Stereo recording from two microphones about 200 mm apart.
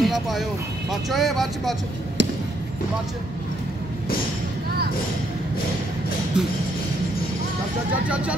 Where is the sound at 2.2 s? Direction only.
60° right (ahead or behind).